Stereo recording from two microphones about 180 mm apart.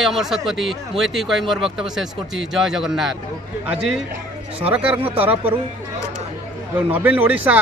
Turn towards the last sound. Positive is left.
turn(degrees=-10)  # may be behind; listen again after turning